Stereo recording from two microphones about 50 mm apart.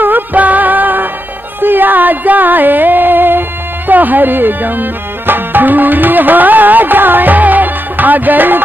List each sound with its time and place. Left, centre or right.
0.0 s music: right